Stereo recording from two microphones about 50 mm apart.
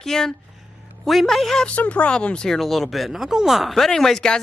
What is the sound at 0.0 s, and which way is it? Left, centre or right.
A woman's voice, centre.